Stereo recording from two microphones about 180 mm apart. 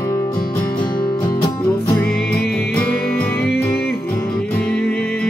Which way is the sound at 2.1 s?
5° left (ahead or behind).